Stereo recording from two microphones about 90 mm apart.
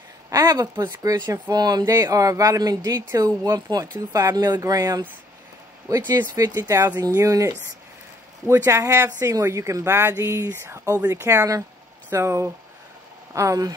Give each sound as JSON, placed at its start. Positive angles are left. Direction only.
{"t": 0.3, "sound": "speech", "side_deg": -40}